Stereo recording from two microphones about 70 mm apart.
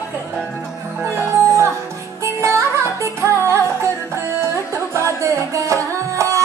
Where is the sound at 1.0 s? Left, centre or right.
Right.